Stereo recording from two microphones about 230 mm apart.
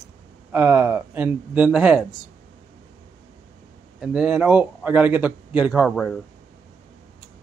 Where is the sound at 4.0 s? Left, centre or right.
Centre.